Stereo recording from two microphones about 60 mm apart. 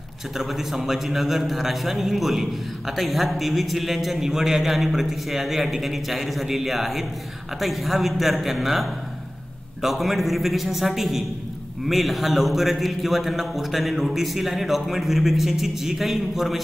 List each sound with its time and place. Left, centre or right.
0.4 s a man's voice: centre